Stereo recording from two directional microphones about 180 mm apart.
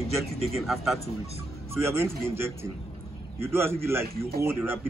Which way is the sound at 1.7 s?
15° right (ahead or behind).